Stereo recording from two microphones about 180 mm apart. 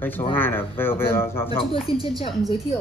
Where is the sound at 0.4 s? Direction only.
10° left (ahead or behind).